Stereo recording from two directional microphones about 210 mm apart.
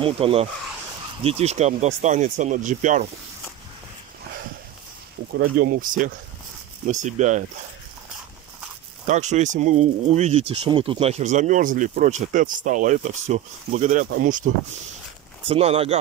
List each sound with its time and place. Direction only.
0.0 s speech: 25° right (ahead or behind)
5.6 s speech: 40° right (ahead or behind)
9.0 s speech: 35° right (ahead or behind)
15.4 s speech: 30° right (ahead or behind)